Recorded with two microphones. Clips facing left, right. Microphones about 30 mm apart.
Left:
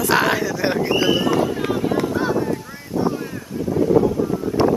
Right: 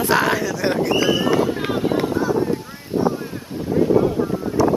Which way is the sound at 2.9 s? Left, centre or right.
Right.